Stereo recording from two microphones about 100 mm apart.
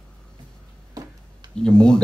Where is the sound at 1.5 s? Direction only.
5° left (ahead or behind).